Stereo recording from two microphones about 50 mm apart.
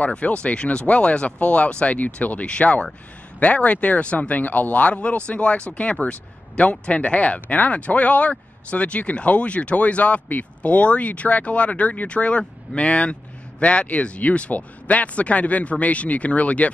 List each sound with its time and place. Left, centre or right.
0.1 s speech: left